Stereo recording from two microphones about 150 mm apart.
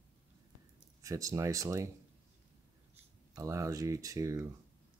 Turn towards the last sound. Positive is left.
turn(degrees=-20)  # may be behind; listen again after turning